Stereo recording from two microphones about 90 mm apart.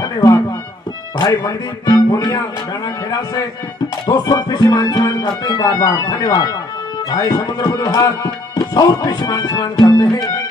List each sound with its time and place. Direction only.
0.0 s music: 40° left (ahead or behind)
1.1 s speech: 45° left (ahead or behind)
4.0 s speech: 45° left (ahead or behind)